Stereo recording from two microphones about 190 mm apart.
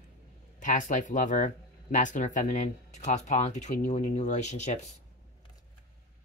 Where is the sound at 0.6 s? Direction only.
40° left (ahead or behind).